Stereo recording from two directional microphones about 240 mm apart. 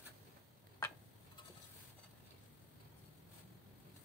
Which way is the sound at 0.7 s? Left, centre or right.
Centre.